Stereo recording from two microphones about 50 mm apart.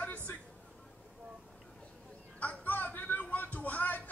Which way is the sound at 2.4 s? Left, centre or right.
Left.